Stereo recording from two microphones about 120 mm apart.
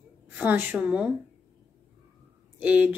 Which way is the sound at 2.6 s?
15° right (ahead or behind).